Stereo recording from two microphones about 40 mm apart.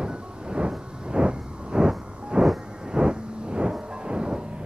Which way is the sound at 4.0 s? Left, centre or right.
Right.